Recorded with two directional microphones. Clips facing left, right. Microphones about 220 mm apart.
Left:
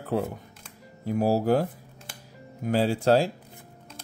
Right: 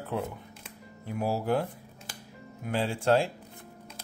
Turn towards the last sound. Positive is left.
turn(degrees=35)  # may be behind; listen again after turning